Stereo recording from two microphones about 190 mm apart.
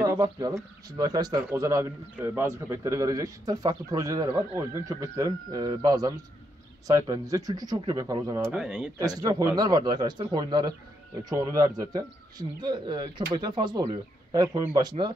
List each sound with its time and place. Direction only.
0.0 s speech: 20° right (ahead or behind)
8.5 s speech: 5° right (ahead or behind)
8.9 s speech: 20° right (ahead or behind)